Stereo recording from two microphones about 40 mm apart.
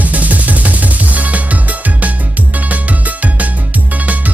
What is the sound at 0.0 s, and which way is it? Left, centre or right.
Music, right.